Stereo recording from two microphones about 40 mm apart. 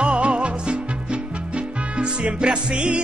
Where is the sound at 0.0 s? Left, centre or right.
Right.